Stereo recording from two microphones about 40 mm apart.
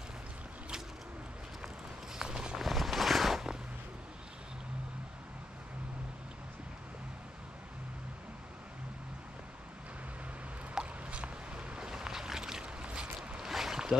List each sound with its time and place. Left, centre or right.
2.1 s walk: right
2.6 s a sound: centre
10.8 s boat: right
12.6 s boat: right
13.4 s boat: centre